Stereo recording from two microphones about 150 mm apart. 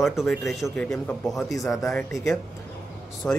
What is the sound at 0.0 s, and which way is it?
A man's voice, centre (ahead or behind).